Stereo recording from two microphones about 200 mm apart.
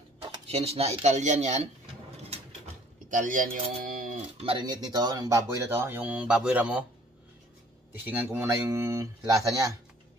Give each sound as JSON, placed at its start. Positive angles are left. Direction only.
{"t": 0.2, "sound": "speech", "side_deg": -30}
{"t": 2.2, "sound": "a sound", "side_deg": -35}
{"t": 4.4, "sound": "speech", "side_deg": -25}
{"t": 8.2, "sound": "speech", "side_deg": -10}